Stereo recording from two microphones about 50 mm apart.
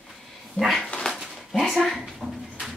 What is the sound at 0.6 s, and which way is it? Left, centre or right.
Speech, centre.